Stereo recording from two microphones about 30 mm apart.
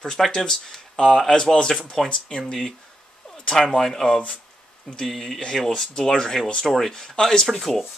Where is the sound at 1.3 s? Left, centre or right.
Left.